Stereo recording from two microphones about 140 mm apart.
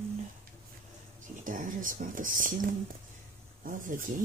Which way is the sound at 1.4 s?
75° right (ahead or behind).